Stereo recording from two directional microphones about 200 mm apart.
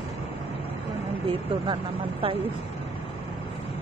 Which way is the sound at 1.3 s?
25° right (ahead or behind).